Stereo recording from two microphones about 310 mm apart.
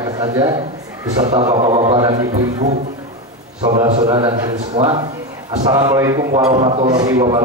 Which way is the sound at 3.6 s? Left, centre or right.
Centre.